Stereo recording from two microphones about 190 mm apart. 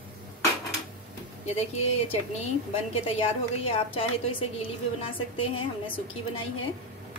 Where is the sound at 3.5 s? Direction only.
30° left (ahead or behind).